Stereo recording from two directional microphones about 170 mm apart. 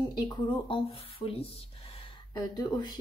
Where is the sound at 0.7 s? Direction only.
35° left (ahead or behind).